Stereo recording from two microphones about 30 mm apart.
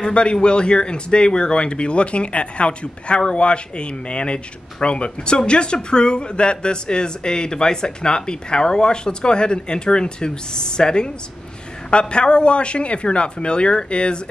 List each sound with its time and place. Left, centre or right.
0.0 s speech: left